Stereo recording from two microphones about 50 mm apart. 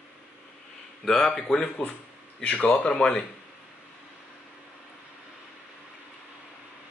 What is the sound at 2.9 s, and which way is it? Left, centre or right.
Speech, centre.